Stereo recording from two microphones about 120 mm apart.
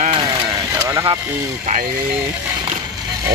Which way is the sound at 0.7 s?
25° right (ahead or behind).